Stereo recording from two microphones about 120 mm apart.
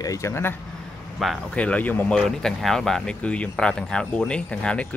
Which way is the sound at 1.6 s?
10° left (ahead or behind).